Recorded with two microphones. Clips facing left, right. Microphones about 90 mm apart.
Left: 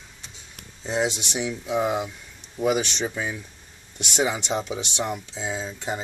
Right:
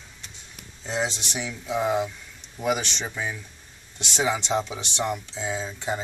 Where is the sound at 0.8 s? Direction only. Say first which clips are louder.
Left 3 dB; 15° left (ahead or behind).